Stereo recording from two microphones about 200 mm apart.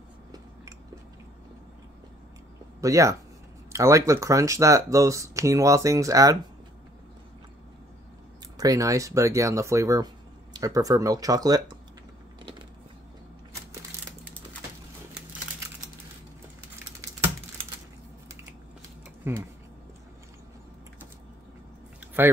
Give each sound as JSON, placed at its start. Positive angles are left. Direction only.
{"t": 2.8, "sound": "speech", "side_deg": -15}
{"t": 8.5, "sound": "speech", "side_deg": -15}
{"t": 19.2, "sound": "a sound", "side_deg": -10}